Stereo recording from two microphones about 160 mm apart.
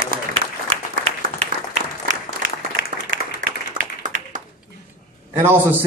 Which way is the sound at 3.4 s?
55° right (ahead or behind).